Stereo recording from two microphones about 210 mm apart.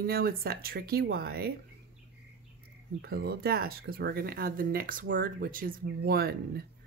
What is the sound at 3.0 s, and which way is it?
Speech, 45° right (ahead or behind).